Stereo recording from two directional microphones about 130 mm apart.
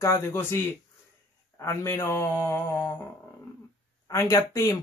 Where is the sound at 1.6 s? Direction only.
20° left (ahead or behind).